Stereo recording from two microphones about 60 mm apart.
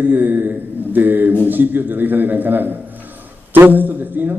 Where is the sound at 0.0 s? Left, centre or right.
Right.